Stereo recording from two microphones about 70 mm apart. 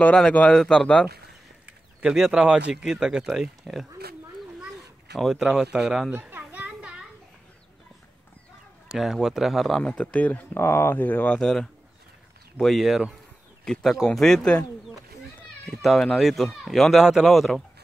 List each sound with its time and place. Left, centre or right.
0.0 s speech: centre
1.7 s bird: centre
2.7 s speech: centre
5.1 s speech: centre
5.4 s speech: centre
6.6 s children playing: centre
8.8 s speech: centre
9.8 s speech: centre
10.5 s speech: left
11.3 s speech: centre
15.8 s speech: centre